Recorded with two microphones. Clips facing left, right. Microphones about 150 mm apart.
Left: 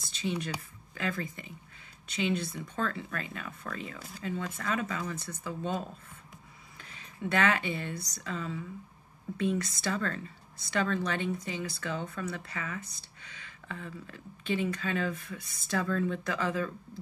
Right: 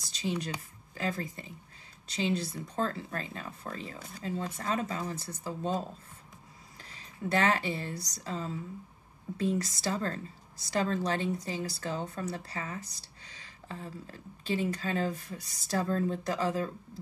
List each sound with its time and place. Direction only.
0.1 s speech: 35° right (ahead or behind)